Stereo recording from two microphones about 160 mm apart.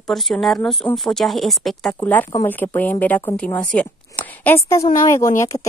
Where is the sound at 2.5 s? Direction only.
10° left (ahead or behind).